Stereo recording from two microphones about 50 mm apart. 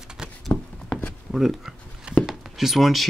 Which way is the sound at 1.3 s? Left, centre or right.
Centre.